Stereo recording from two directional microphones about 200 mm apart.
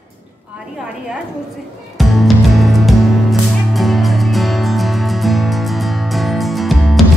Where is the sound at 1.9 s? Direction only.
Centre (ahead or behind).